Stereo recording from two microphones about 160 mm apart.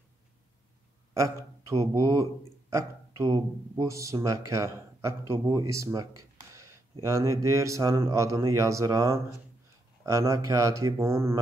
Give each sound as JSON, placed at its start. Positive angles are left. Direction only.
{"t": 1.1, "sound": "a man's voice", "side_deg": -20}
{"t": 6.5, "sound": "a sound", "side_deg": -20}
{"t": 7.4, "sound": "speech", "side_deg": -20}